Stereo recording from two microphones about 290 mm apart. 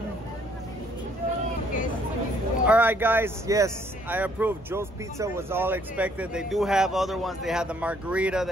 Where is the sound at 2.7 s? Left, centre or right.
Centre.